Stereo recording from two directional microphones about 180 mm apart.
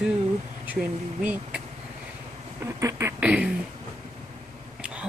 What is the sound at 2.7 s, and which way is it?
Speech, 15° right (ahead or behind).